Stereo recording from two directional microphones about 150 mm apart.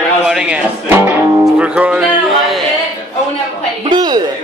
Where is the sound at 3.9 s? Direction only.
25° right (ahead or behind).